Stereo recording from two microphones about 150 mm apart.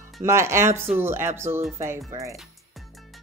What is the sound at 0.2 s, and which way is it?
Speech, 20° right (ahead or behind).